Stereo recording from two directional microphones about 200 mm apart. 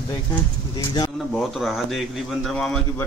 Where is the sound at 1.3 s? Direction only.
Centre (ahead or behind).